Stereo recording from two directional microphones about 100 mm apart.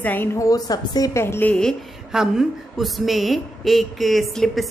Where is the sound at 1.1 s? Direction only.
25° left (ahead or behind).